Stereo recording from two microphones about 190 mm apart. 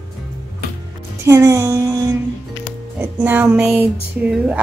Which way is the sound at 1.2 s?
15° right (ahead or behind).